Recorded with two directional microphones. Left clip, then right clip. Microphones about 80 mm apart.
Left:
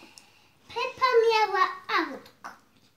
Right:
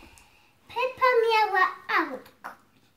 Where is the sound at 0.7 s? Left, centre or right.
Centre.